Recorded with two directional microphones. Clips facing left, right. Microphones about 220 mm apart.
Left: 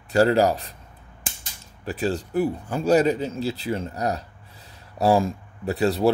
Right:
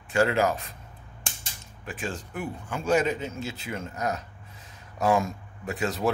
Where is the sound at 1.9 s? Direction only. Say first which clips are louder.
Left 9 dB; 35° left (ahead or behind).